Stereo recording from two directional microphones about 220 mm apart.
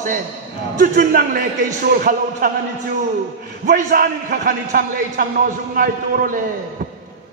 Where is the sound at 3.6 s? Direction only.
40° right (ahead or behind).